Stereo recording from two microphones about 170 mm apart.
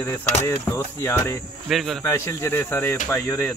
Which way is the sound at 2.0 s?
15° left (ahead or behind).